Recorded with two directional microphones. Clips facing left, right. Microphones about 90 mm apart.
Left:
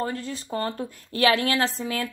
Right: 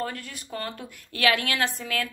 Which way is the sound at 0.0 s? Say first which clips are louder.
Left 4 dB; 25° left (ahead or behind).